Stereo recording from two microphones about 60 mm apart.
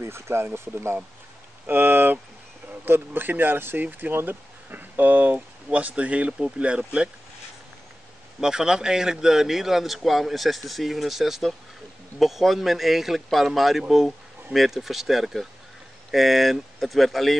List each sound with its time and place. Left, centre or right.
0.0 s speech: right
1.7 s speech: right; by 7.1 s centre
8.4 s speech: centre